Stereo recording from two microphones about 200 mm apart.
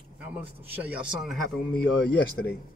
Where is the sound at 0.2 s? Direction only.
10° right (ahead or behind).